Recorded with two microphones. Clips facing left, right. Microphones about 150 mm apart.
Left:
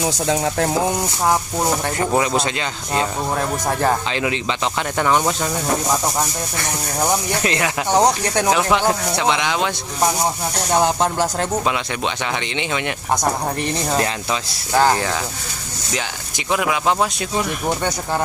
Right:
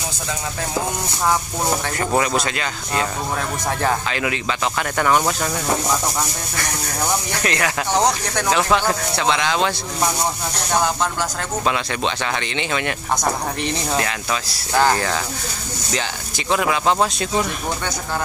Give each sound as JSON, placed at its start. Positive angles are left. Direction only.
{"t": 0.0, "sound": "speech", "side_deg": 65}
{"t": 2.0, "sound": "speech", "side_deg": 20}
{"t": 4.1, "sound": "speech", "side_deg": 25}
{"t": 6.6, "sound": "speech", "side_deg": 20}
{"t": 10.8, "sound": "speech", "side_deg": 30}
{"t": 12.5, "sound": "speech", "side_deg": 15}
{"t": 14.7, "sound": "speech", "side_deg": 10}
{"t": 16.4, "sound": "speech", "side_deg": 10}